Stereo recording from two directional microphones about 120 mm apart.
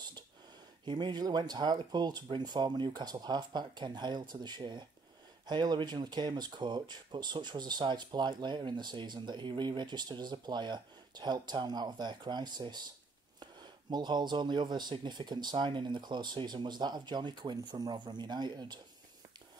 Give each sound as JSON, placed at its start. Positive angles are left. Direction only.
{"t": 0.8, "sound": "speech", "side_deg": -40}